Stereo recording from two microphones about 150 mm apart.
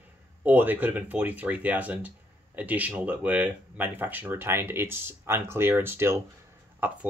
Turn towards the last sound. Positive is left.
turn(degrees=-15)  # may be behind; listen again after turning